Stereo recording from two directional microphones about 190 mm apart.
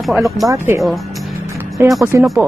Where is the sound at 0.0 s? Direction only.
Centre (ahead or behind).